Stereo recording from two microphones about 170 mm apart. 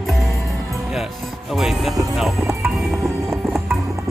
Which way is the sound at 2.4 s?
15° right (ahead or behind).